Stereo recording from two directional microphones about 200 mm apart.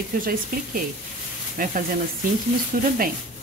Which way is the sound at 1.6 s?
45° right (ahead or behind).